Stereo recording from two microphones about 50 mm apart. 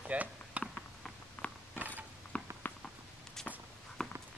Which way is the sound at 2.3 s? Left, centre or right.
Left.